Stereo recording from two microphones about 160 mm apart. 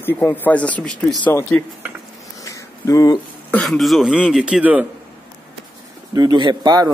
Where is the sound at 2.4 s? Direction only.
20° left (ahead or behind).